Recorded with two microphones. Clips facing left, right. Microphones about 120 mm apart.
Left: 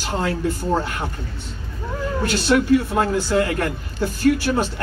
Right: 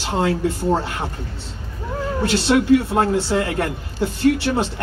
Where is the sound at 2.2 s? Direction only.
25° right (ahead or behind).